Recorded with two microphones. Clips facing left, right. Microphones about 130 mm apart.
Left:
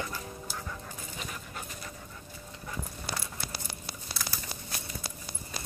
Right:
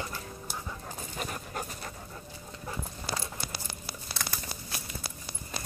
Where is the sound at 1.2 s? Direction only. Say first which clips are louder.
Right 6 dB; 45° right (ahead or behind).